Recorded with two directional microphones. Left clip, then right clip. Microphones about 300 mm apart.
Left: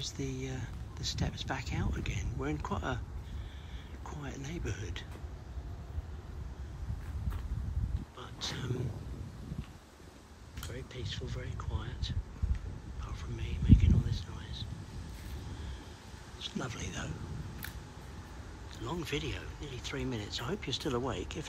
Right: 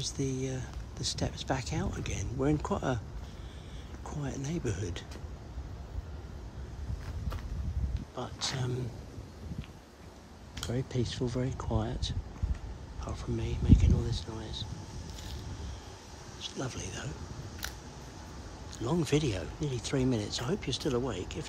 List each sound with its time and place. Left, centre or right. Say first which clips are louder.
0.0 s speech: right 5 dB; centre
4.0 s speech: right 5 dB; centre
8.2 s a sound: right 5 dB; centre
10.7 s speech: right 8 dB; centre
16.3 s speech: right 1 dB; centre
18.8 s speech: right 7 dB; centre